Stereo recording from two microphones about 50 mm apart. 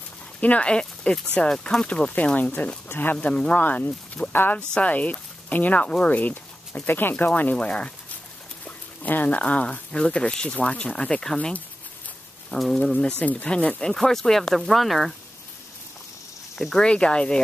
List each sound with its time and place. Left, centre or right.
0.4 s speech: left
2.3 s speech: left
3.2 s speech: left
3.5 s speech: left
4.8 s speech: left
7.5 s speech: left
9.0 s speech: left; by 11.3 s centre
12.4 s speech: centre
13.2 s speech: left
13.7 s speech: centre
16.5 s speech: centre
16.8 s speech: centre